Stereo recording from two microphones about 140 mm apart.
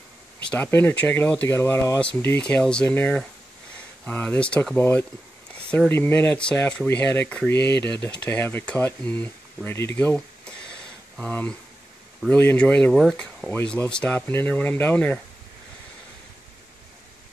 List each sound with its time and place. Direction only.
0.4 s speech: 10° left (ahead or behind)